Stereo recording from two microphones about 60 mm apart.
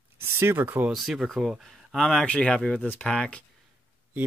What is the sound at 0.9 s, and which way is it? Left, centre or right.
Speech, centre.